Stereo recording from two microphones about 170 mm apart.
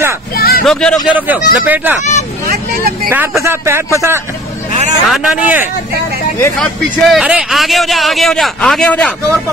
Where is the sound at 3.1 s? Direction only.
15° right (ahead or behind).